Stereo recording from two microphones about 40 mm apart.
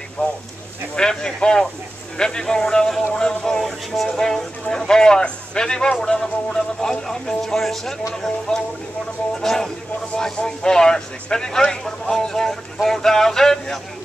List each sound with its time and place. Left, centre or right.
0.2 s speech: left
0.9 s a man's voice: centre
3.5 s a man's voice: centre